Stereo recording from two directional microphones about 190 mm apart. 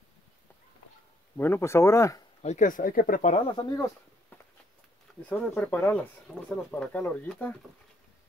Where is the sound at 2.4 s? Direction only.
40° left (ahead or behind).